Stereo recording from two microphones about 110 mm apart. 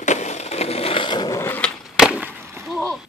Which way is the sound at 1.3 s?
25° left (ahead or behind).